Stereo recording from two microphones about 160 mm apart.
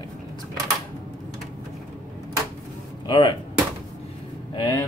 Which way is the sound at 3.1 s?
30° left (ahead or behind).